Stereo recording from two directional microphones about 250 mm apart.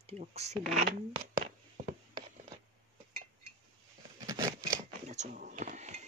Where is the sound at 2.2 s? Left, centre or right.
Centre.